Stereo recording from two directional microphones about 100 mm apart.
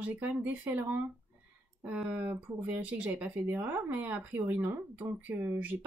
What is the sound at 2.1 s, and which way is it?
Speech, 20° right (ahead or behind).